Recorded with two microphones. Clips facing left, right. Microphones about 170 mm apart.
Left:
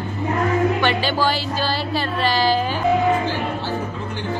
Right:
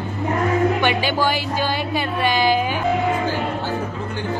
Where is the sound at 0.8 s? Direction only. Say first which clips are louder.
Even; 15° right (ahead or behind).